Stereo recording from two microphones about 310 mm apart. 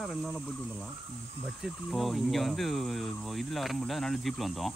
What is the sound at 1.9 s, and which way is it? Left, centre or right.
Speech, centre.